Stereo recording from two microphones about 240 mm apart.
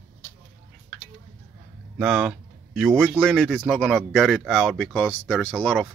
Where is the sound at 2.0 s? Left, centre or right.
Centre.